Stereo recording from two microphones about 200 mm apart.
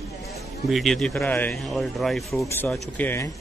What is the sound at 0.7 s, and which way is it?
Speech, centre (ahead or behind).